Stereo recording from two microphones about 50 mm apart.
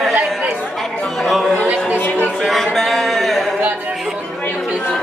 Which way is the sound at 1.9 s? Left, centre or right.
Left.